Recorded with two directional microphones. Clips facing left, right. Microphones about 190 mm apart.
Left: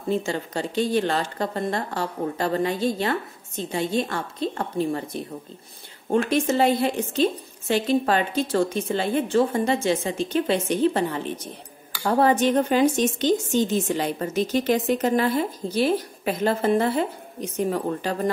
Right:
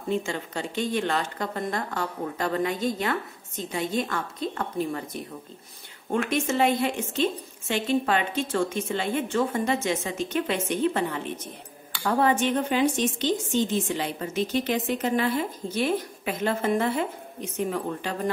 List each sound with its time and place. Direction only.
0.1 s speech: 35° left (ahead or behind)